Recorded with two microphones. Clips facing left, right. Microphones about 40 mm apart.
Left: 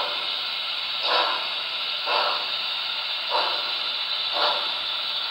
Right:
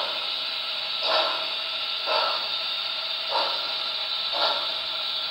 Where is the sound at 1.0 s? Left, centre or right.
Centre.